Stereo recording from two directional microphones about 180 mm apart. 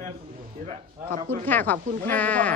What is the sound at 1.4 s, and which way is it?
A woman's voice, 10° left (ahead or behind).